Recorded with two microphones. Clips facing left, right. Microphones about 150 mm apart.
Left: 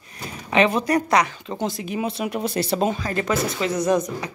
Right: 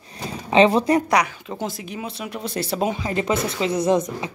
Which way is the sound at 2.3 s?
10° left (ahead or behind).